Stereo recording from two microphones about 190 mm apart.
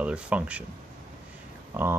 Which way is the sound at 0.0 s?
5° right (ahead or behind).